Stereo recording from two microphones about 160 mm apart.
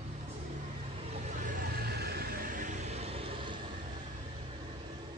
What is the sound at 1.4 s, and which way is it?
Vehicle, 70° right (ahead or behind).